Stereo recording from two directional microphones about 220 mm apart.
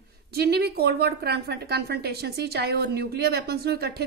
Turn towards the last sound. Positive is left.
turn(degrees=-45)  # may be behind; listen again after turning